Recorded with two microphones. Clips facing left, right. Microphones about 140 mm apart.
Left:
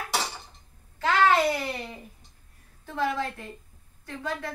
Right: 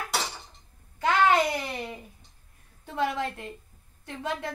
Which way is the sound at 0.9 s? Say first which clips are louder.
Even; 20° right (ahead or behind).